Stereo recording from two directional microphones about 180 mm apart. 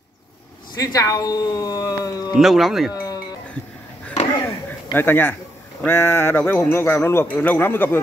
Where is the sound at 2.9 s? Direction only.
20° left (ahead or behind).